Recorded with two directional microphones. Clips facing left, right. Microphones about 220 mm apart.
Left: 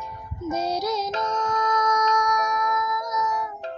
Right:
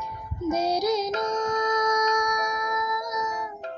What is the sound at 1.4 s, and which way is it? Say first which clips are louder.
Music: right 1 dB; 30° right (ahead or behind).